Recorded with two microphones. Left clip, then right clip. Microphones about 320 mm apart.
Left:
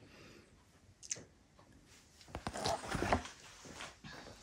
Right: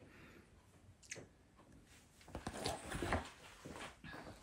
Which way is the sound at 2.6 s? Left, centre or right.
Left.